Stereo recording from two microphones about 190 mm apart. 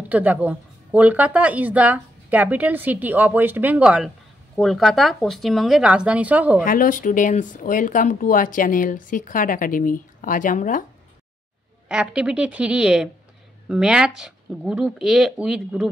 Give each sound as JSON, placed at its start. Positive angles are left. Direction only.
{"t": 0.1, "sound": "a woman's voice", "side_deg": -10}
{"t": 6.6, "sound": "speech", "side_deg": 45}
{"t": 11.9, "sound": "speech", "side_deg": -5}